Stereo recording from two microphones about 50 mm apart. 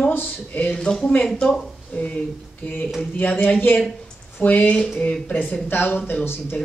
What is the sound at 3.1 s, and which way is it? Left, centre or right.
Speech, left.